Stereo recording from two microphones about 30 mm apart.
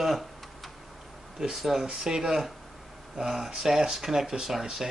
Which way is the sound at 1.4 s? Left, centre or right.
Right.